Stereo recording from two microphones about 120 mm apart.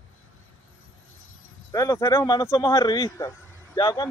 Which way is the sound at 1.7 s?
25° left (ahead or behind).